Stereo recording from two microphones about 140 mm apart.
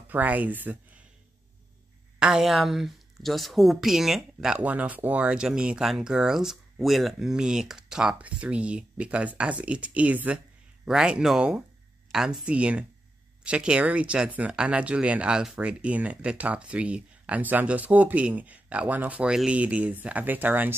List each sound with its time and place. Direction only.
0.1 s speech: 10° right (ahead or behind)
2.1 s speech: 5° right (ahead or behind)